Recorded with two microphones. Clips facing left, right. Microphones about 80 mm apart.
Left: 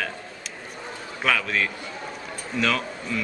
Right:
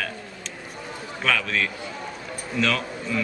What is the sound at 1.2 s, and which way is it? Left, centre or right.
A man's voice, centre.